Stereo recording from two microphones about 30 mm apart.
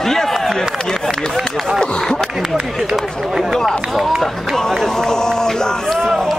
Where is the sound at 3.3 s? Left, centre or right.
Centre.